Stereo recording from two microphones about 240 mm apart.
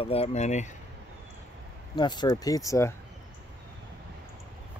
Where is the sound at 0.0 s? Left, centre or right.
Left.